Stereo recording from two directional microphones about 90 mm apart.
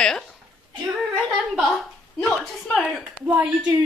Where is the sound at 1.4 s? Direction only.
5° right (ahead or behind).